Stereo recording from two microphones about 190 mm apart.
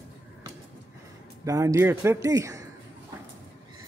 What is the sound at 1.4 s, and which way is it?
A man's voice, 15° right (ahead or behind).